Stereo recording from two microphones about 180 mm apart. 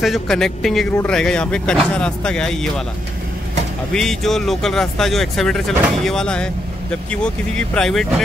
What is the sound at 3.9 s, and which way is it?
Speech, centre (ahead or behind).